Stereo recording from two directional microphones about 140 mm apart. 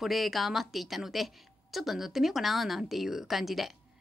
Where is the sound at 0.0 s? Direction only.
Centre (ahead or behind).